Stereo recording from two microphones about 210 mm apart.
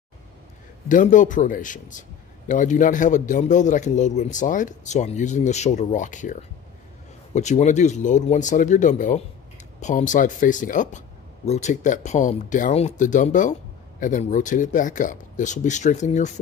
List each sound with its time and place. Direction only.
0.8 s speech: 40° left (ahead or behind)
7.3 s speech: 35° left (ahead or behind)